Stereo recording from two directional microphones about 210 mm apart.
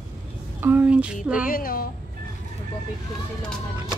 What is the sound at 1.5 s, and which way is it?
Speech, 45° left (ahead or behind).